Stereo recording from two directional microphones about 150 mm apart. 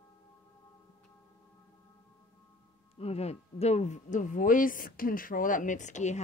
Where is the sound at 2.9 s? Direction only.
45° left (ahead or behind).